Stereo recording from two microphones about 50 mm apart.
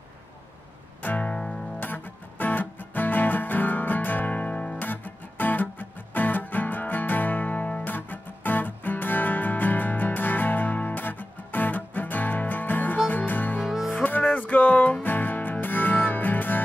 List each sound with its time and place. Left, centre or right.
1.0 s music: left
1.3 s music: centre
1.8 s music: left
4.7 s music: left
13.6 s music: centre
13.8 s music: left